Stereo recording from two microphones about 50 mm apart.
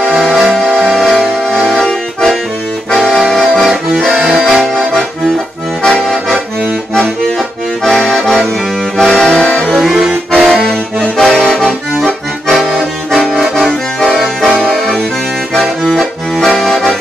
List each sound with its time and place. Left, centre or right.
0.1 s music: centre
1.7 s accordion: centre
4.4 s accordion: centre
5.8 s accordion: centre
9.8 s accordion: centre
12.5 s accordion: centre
15.5 s accordion: centre